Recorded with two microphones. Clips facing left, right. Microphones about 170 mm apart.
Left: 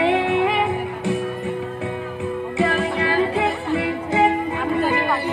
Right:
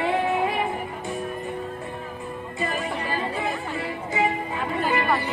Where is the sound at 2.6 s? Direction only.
80° left; by 4.3 s 60° left (ahead or behind).